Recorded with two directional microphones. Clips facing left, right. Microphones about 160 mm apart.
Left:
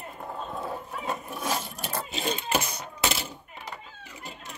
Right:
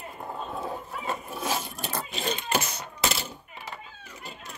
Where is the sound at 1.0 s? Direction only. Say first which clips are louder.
Right 1 dB; centre (ahead or behind).